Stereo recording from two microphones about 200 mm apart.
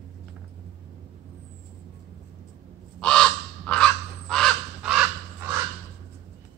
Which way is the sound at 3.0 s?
5° left (ahead or behind).